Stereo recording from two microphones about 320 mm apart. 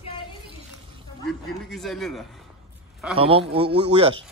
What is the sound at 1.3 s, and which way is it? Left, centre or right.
A man's voice, centre.